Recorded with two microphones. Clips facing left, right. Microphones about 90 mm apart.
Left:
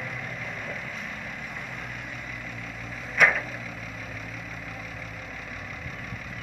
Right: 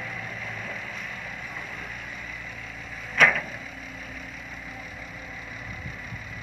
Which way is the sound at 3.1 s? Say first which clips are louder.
Right 1 dB; 15° left (ahead or behind).